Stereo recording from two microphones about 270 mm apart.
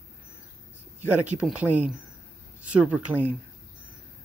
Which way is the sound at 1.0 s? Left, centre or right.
Centre.